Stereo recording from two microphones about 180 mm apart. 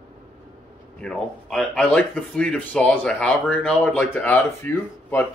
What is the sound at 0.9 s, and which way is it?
Speech, 5° left (ahead or behind).